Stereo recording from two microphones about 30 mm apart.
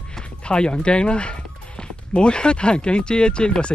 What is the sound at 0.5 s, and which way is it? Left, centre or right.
Speech, left.